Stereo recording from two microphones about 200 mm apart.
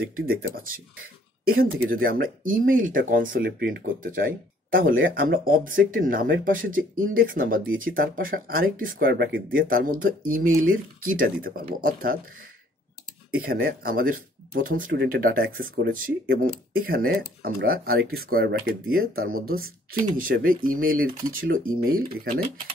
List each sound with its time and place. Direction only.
0.3 s speech: 45° right (ahead or behind)
13.7 s speech: 45° right (ahead or behind)